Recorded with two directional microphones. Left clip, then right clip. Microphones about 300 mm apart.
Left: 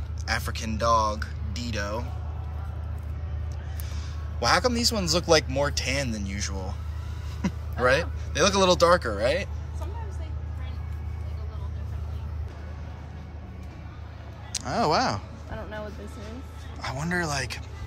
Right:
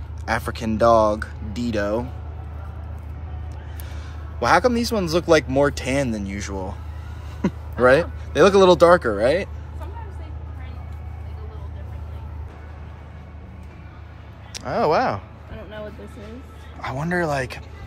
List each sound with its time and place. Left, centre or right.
0.2 s speech: centre
4.4 s speech: centre
14.5 s speech: centre
16.8 s speech: centre